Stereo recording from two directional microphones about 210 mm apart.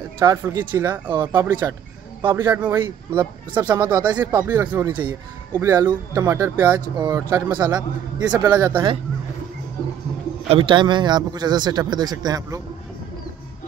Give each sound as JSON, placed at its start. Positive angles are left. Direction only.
{"t": 0.2, "sound": "speech", "side_deg": -15}
{"t": 1.5, "sound": "speech", "side_deg": -10}
{"t": 10.5, "sound": "speech", "side_deg": -25}